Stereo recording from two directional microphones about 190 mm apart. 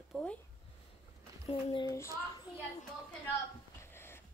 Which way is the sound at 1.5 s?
25° left (ahead or behind).